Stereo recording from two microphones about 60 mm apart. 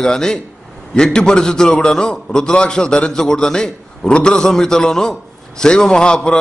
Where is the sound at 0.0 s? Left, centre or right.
Centre.